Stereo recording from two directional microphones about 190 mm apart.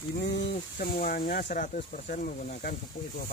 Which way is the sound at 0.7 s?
50° left (ahead or behind).